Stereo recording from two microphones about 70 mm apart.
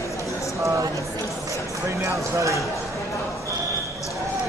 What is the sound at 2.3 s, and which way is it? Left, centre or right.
Speech, right.